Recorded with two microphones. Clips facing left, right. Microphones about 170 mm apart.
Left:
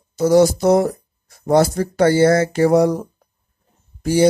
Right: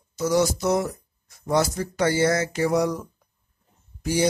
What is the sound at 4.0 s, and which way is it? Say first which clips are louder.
Speech: left 8 dB; 30° left (ahead or behind).